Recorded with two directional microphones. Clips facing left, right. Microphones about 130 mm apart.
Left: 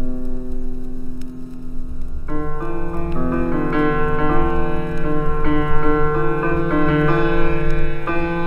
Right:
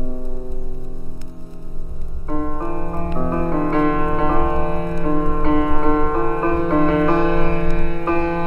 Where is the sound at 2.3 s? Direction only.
30° right (ahead or behind).